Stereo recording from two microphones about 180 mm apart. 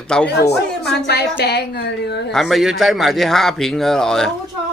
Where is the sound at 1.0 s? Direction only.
65° left (ahead or behind).